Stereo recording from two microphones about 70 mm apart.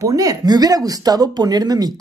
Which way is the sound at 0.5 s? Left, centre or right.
Right.